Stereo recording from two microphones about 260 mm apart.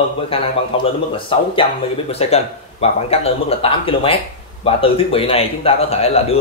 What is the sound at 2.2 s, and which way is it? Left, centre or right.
A man's voice, left.